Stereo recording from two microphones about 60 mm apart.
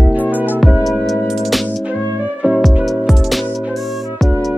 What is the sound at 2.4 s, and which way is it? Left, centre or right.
Music, right.